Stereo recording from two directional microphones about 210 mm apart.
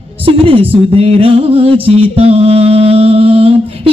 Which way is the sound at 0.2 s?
25° right (ahead or behind).